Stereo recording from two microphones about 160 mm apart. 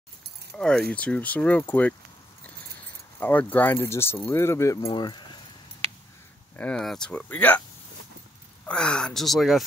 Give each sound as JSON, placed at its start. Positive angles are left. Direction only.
{"t": 0.6, "sound": "speech", "side_deg": 5}
{"t": 3.2, "sound": "speech", "side_deg": 10}
{"t": 4.8, "sound": "speech", "side_deg": 30}
{"t": 6.5, "sound": "speech", "side_deg": 5}
{"t": 8.6, "sound": "speech", "side_deg": 5}